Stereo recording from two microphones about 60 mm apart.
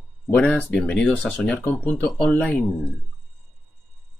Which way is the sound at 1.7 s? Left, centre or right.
Left.